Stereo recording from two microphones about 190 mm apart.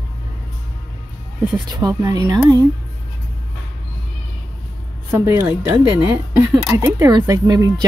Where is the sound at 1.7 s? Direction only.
20° right (ahead or behind).